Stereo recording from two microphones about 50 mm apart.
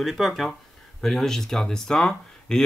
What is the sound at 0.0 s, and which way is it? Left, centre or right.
Speech, centre.